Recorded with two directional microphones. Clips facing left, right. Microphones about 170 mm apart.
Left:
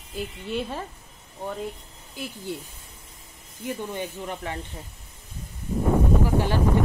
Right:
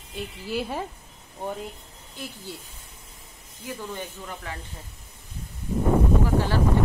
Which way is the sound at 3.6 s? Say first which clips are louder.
Left 4 dB; 25° left (ahead or behind).